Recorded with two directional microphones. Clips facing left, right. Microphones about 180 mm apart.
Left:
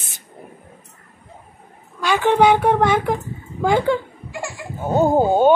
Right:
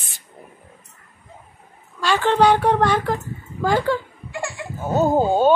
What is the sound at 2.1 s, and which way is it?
A woman's voice, 10° left (ahead or behind).